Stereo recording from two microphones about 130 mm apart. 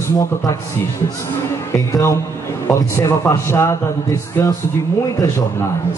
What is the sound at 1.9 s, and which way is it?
A man's voice, 25° left (ahead or behind).